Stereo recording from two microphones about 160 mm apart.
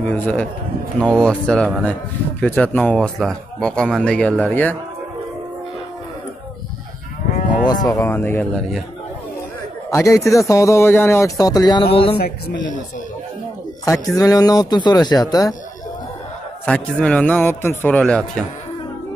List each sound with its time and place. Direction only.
0.0 s a man's voice: 10° left (ahead or behind)
7.6 s speech: 25° left (ahead or behind)
9.8 s speech: 20° left (ahead or behind); by 12.2 s 35° left (ahead or behind)
14.1 s speech: 20° left (ahead or behind)
16.6 s a man's voice: 5° left (ahead or behind)